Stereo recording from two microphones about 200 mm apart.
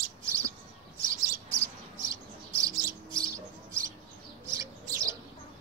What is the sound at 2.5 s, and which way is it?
Bird, 15° right (ahead or behind).